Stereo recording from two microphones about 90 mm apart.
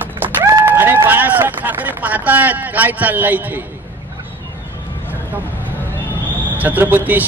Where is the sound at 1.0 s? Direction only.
20° right (ahead or behind).